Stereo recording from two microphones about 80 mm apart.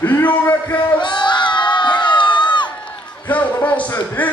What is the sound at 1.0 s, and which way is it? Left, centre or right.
Crowd, left.